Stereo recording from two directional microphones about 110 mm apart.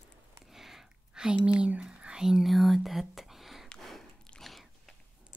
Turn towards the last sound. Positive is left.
turn(degrees=0)  # may be behind; listen again after turning